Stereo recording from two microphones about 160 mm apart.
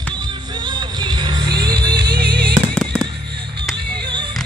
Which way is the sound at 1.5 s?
90° right.